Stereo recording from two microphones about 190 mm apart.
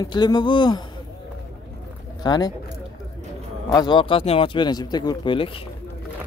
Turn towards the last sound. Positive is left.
turn(degrees=25)  # may be behind; listen again after turning